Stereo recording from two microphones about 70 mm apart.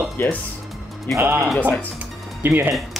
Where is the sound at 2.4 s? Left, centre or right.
Right.